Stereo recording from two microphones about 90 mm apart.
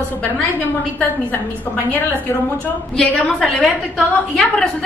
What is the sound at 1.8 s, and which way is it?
Speech, 20° left (ahead or behind).